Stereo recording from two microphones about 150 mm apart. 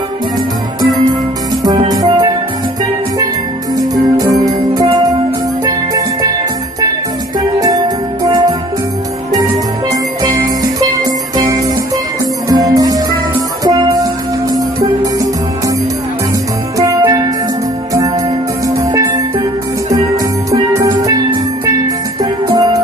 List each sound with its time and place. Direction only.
1.6 s music: 25° right (ahead or behind)
3.7 s music: 25° right (ahead or behind)
7.3 s music: 25° right (ahead or behind)
10.2 s music: 25° right (ahead or behind)
16.7 s music: 25° right (ahead or behind)
18.7 s music: 20° right (ahead or behind)
20.9 s music: 25° right (ahead or behind)